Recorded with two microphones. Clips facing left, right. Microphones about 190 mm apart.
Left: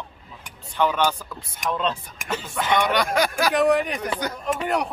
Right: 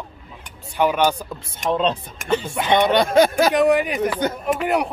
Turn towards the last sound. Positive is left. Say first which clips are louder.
# right 4 dB
turn(degrees=-5)  # may be behind; listen again after turning